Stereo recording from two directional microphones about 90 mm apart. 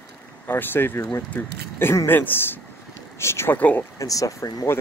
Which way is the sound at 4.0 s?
40° left (ahead or behind).